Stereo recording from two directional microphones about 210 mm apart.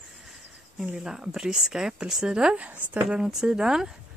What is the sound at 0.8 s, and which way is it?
Speech, 5° right (ahead or behind).